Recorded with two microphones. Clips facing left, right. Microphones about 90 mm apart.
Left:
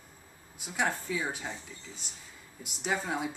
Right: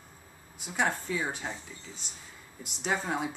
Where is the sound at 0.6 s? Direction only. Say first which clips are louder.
Right 2 dB; centre (ahead or behind).